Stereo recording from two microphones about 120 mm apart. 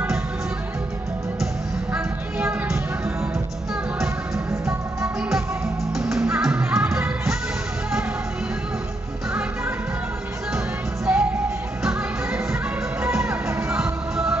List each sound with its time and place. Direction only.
1.9 s music: 15° right (ahead or behind)
5.9 s music: 5° right (ahead or behind)
11.1 s music: 10° right (ahead or behind)
13.2 s music: 20° right (ahead or behind)